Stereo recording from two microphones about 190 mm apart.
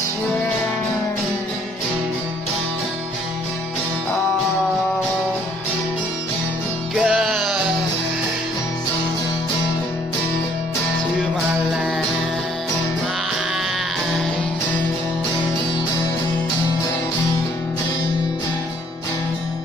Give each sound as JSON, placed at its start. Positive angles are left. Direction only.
{"t": 7.0, "sound": "music", "side_deg": -5}